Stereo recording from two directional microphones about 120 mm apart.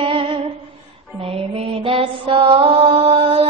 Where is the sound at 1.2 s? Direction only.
55° right (ahead or behind).